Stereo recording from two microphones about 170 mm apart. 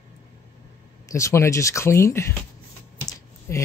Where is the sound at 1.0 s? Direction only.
20° left (ahead or behind).